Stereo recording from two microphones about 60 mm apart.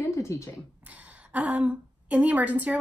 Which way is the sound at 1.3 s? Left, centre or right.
Right.